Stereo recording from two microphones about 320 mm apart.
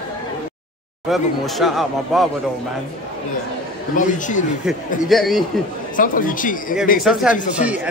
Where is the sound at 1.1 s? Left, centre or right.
Centre.